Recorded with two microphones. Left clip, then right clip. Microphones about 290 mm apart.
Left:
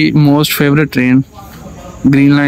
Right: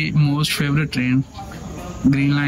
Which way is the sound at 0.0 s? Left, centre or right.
Centre.